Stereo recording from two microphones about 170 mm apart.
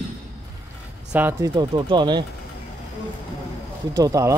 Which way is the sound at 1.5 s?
25° right (ahead or behind).